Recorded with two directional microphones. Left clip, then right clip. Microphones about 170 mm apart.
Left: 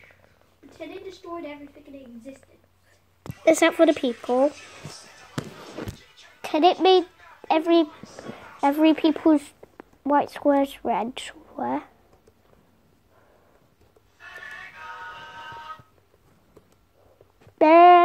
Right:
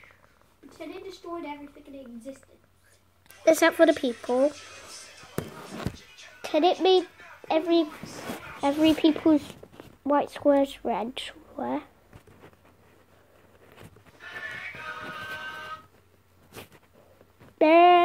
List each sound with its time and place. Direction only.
3.4 s speech: 5° left (ahead or behind)
6.4 s a child's voice: 20° left (ahead or behind); by 11.9 s 5° left (ahead or behind)
17.6 s a sound: 5° left (ahead or behind)